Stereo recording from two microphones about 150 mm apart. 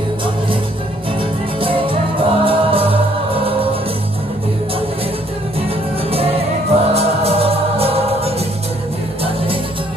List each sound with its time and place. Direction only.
1.6 s music: 35° right (ahead or behind)
5.6 s music: 40° right (ahead or behind)